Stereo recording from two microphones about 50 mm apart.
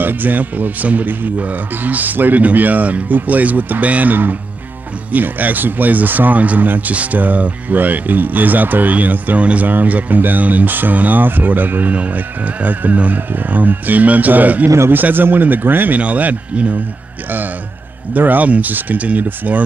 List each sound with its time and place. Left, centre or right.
0.0 s speech: right
16.0 s speech: right
18.1 s speech: right